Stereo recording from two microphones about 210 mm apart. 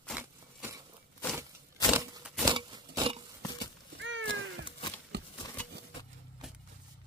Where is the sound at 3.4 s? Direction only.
20° left (ahead or behind).